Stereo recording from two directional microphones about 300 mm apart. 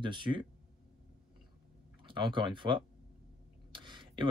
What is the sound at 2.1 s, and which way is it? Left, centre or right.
Speech, centre.